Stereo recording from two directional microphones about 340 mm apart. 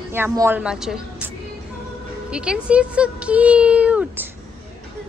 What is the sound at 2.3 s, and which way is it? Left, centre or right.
Speech, centre.